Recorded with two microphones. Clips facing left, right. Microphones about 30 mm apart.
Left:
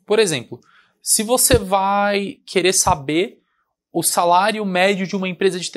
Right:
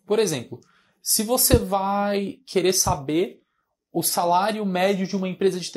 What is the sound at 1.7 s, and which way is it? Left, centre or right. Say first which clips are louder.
Speech: left 6 dB; left.